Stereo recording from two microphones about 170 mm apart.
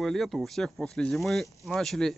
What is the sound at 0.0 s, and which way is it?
Speech, centre (ahead or behind).